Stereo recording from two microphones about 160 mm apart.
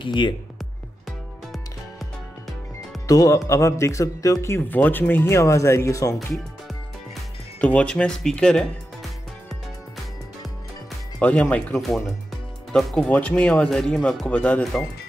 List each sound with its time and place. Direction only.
0.0 s speech: 30° left (ahead or behind)
3.1 s speech: 20° left (ahead or behind)
6.3 s music: centre (ahead or behind)
11.1 s speech: 10° left (ahead or behind)